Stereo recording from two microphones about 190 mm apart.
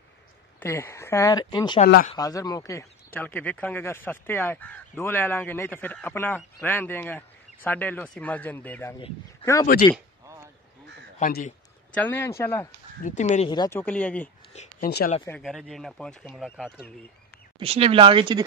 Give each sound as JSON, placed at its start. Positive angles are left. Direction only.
{"t": 0.6, "sound": "speech", "side_deg": 10}
{"t": 10.2, "sound": "a sound", "side_deg": -15}
{"t": 11.1, "sound": "speech", "side_deg": 45}
{"t": 11.9, "sound": "speech", "side_deg": 10}
{"t": 13.0, "sound": "speech", "side_deg": 40}
{"t": 13.5, "sound": "speech", "side_deg": 20}
{"t": 13.7, "sound": "speech", "side_deg": 5}
{"t": 14.5, "sound": "a sound", "side_deg": 35}
{"t": 15.4, "sound": "speech", "side_deg": 0}
{"t": 17.6, "sound": "speech", "side_deg": -30}